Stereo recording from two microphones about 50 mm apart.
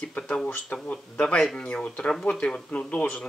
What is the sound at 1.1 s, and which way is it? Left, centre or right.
Speech, centre.